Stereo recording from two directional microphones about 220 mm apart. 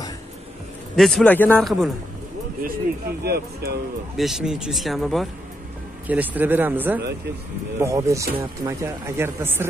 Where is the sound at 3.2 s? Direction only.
45° right (ahead or behind).